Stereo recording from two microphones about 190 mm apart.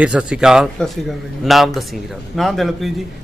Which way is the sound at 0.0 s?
5° right (ahead or behind).